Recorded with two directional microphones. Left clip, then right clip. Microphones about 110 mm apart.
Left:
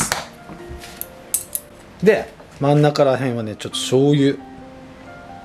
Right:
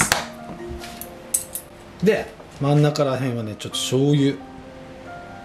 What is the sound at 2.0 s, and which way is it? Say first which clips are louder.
Speech: left 4 dB; 20° left (ahead or behind).